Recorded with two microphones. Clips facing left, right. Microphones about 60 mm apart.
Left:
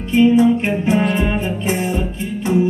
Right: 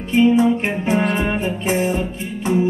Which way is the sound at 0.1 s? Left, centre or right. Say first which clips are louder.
Left 2 dB; centre.